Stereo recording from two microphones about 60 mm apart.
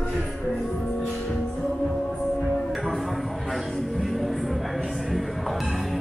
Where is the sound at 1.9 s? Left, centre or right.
Centre.